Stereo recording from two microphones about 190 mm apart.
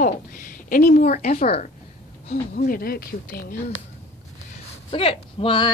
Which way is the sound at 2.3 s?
50° left (ahead or behind).